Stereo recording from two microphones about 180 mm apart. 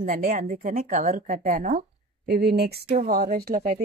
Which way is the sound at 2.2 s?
65° right (ahead or behind).